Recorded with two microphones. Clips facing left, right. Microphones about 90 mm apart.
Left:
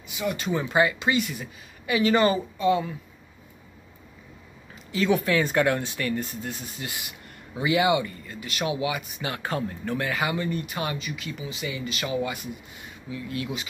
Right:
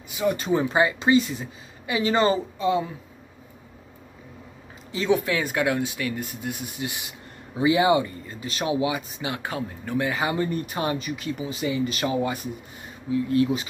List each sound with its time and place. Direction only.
0.2 s speech: 35° right (ahead or behind)
5.1 s speech: 10° right (ahead or behind)
10.0 s speech: 30° right (ahead or behind)